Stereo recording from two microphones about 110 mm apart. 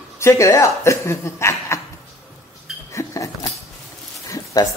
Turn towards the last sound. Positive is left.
turn(degrees=35)  # may be behind; listen again after turning